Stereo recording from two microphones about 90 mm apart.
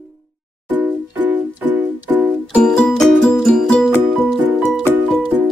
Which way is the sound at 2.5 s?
10° left (ahead or behind).